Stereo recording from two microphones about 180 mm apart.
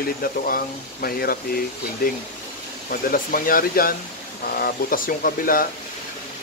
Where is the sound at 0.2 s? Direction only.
55° left (ahead or behind).